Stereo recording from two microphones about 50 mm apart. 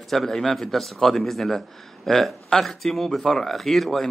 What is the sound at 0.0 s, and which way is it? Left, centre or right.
A man's voice, centre.